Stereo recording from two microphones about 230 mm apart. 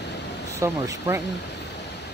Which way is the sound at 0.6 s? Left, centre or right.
Centre.